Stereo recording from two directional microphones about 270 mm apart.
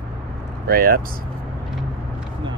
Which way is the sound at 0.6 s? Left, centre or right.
Right.